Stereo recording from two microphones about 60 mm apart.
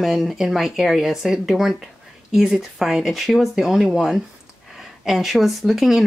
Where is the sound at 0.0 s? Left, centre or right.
Centre.